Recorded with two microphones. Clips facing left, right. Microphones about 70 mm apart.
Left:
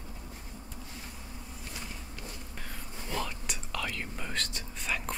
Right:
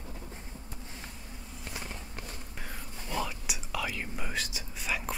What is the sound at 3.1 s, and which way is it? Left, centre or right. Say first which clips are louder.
Whispering: right 1 dB; centre.